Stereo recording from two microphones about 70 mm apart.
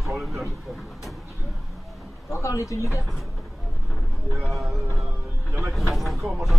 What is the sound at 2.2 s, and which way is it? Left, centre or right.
Speech, left.